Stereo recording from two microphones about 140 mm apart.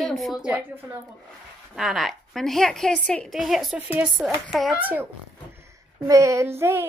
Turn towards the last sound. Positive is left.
turn(degrees=-15)  # may be behind; listen again after turning